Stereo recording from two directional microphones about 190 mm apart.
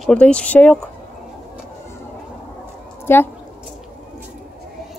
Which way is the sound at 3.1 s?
10° left (ahead or behind).